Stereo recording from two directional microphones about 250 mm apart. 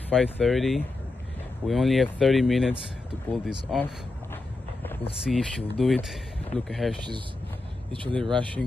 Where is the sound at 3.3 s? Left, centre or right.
Centre.